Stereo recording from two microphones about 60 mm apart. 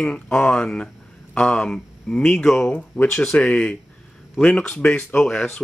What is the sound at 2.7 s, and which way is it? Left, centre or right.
Speech, left.